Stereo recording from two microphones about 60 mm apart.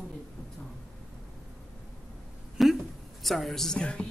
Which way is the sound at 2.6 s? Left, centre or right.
Centre.